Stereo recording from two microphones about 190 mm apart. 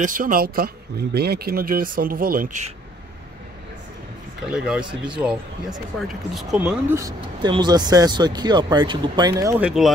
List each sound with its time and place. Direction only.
0.0 s speech: 45° right (ahead or behind)
4.5 s speech: 5° right (ahead or behind)
9.6 s speech: 5° right (ahead or behind)